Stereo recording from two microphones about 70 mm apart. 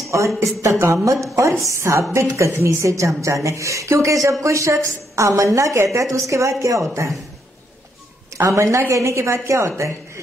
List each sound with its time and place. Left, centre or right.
0.6 s a woman's voice: right
8.4 s a woman's voice: right